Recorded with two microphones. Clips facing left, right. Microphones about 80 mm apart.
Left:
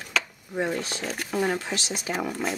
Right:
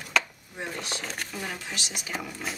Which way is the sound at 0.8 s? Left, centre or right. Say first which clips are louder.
Left 3 dB; centre.